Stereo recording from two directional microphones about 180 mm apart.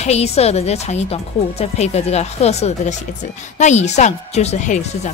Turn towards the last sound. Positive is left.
turn(degrees=40)  # may be behind; listen again after turning